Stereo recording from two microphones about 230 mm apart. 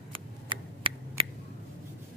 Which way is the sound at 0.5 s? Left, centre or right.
Right.